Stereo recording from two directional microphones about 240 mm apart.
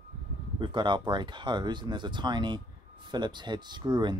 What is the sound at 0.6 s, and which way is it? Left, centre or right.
Speech, centre.